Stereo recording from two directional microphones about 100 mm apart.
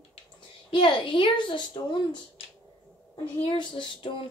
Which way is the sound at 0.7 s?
55° left (ahead or behind).